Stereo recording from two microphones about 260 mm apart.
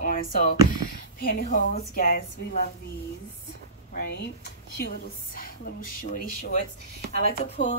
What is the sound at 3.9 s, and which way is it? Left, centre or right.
A woman's voice, left.